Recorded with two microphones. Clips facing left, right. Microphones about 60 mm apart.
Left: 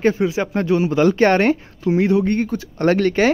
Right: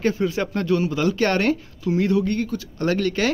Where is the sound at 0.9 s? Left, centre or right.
Left.